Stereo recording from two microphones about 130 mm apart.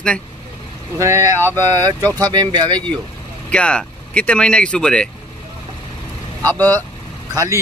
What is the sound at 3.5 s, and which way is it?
Speech, 10° left (ahead or behind).